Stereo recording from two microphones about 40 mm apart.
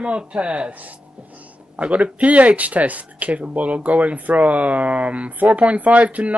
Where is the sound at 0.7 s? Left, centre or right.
Right.